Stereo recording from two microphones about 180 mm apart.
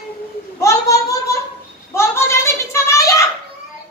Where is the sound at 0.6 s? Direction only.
15° left (ahead or behind).